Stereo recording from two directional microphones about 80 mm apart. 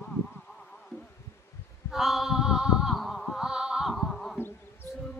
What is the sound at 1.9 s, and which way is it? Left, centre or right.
Music, centre.